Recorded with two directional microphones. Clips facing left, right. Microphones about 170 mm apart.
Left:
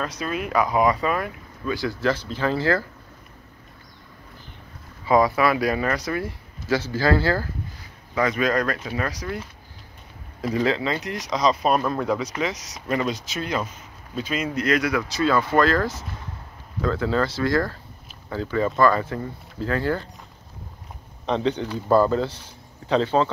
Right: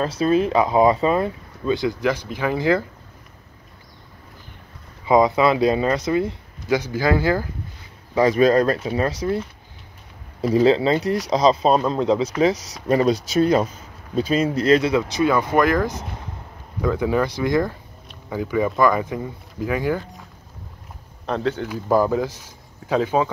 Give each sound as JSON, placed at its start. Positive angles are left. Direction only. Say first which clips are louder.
{"t": 0.0, "sound": "speech", "louder": "right 9 dB", "side_deg": -30}
{"t": 5.0, "sound": "speech", "louder": "right 3 dB", "side_deg": -20}
{"t": 8.1, "sound": "speech", "louder": "right 7 dB", "side_deg": -30}
{"t": 10.4, "sound": "speech", "louder": "right 7 dB", "side_deg": -30}
{"t": 12.4, "sound": "speech", "louder": "right 8 dB", "side_deg": -30}
{"t": 21.3, "sound": "speech", "louder": "even", "side_deg": 0}